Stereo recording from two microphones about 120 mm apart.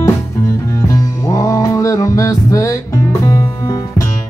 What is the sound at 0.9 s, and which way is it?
Music, 25° left (ahead or behind).